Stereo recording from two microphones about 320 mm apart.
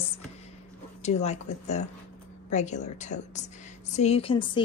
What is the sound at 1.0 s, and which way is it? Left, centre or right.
A woman's voice, left.